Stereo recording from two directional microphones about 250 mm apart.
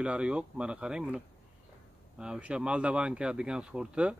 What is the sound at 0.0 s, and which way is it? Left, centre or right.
Speech, centre.